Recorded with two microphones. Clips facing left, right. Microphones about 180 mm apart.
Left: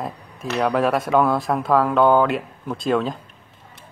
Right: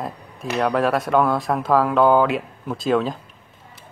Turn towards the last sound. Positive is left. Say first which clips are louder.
# right 1 dB
turn(degrees=0)  # may be behind; listen again after turning